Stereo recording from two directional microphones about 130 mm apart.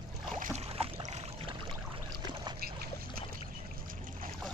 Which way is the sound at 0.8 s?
50° right (ahead or behind).